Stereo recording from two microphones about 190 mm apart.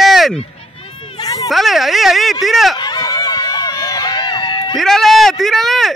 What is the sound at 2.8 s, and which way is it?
Run, 20° left (ahead or behind).